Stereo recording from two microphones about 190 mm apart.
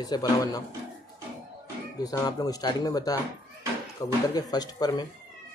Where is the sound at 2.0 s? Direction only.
20° left (ahead or behind).